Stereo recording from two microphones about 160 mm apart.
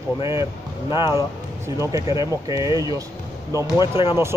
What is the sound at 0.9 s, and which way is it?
Speech, 25° left (ahead or behind).